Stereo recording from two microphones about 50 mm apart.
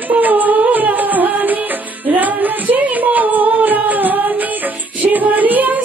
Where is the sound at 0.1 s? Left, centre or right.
Right.